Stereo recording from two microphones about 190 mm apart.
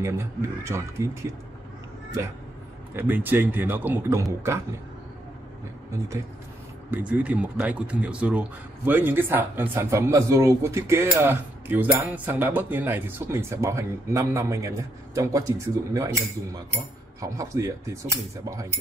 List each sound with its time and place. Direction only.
0.0 s speech: 15° right (ahead or behind)
2.9 s speech: 10° right (ahead or behind)
5.9 s speech: 15° right (ahead or behind)